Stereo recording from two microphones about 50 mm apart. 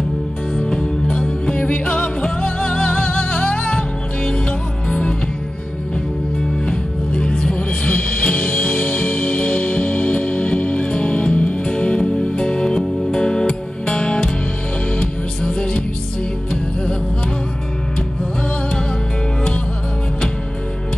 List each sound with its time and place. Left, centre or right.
0.6 s music: centre
6.6 s music: centre